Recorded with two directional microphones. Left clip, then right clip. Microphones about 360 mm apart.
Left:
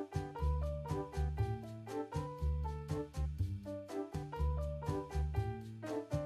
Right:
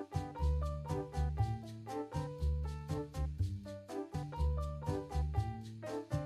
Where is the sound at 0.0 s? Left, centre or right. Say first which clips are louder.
Even; centre.